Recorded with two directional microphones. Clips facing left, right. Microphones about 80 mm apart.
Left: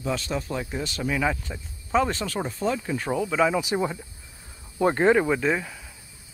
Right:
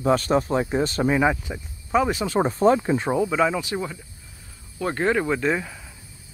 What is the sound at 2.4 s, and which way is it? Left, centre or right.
Speech, right.